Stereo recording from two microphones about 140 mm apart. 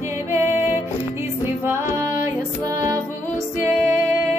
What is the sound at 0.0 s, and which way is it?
Music, 20° right (ahead or behind).